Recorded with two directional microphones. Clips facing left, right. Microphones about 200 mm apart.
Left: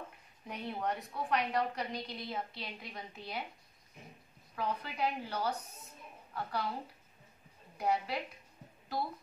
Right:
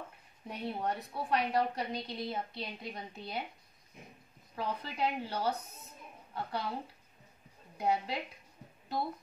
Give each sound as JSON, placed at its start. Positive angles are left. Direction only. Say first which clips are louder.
{"t": 0.5, "sound": "a woman's voice", "louder": "right 1 dB", "side_deg": -30}
{"t": 4.6, "sound": "a woman's voice", "louder": "even", "side_deg": -30}
{"t": 7.7, "sound": "a woman's voice", "louder": "right 1 dB", "side_deg": -25}